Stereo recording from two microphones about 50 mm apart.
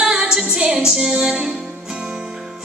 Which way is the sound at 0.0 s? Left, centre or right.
Centre.